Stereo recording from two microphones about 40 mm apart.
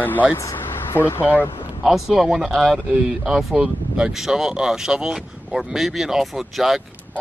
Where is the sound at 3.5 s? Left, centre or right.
Right.